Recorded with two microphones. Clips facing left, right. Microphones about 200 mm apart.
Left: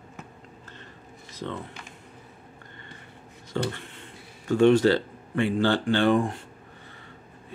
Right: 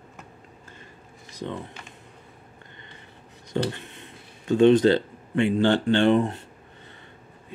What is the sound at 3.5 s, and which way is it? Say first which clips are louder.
Speech: right 2 dB; 20° right (ahead or behind).